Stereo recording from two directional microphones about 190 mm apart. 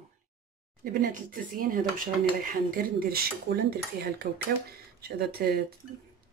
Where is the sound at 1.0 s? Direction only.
45° right (ahead or behind).